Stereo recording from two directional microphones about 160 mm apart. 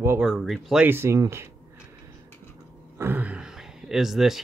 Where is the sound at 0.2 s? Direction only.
Centre (ahead or behind).